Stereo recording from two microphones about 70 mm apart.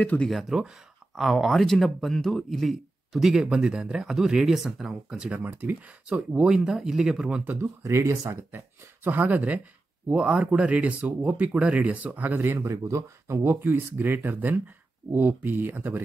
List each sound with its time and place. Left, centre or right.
0.0 s speech: left
0.3 s a man's voice: centre
5.4 s speech: right
6.0 s speech: centre
7.8 s speech: right
8.3 s speech: right
12.6 s speech: right